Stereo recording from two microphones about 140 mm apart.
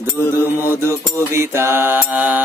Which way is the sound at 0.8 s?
20° right (ahead or behind).